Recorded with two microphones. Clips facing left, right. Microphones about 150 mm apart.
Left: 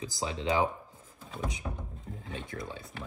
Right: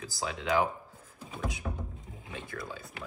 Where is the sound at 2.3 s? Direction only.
25° left (ahead or behind).